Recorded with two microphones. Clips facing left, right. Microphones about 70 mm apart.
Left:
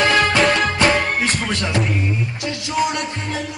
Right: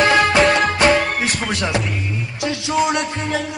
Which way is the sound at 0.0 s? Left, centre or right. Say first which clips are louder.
Right 2 dB; centre.